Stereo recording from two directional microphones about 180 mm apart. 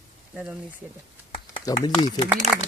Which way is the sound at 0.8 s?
10° right (ahead or behind).